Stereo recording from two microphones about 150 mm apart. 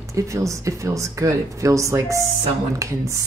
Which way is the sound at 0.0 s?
20° right (ahead or behind).